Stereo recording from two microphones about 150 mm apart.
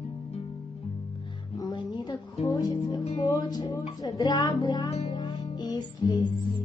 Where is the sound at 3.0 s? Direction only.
50° left (ahead or behind).